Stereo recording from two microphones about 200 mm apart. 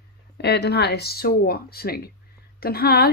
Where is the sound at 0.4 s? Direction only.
55° left (ahead or behind).